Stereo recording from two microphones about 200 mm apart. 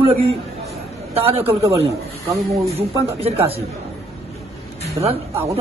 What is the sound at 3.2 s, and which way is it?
Speech, 30° right (ahead or behind).